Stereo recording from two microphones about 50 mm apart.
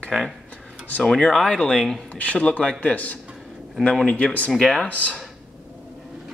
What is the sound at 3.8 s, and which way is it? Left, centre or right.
Speech, centre.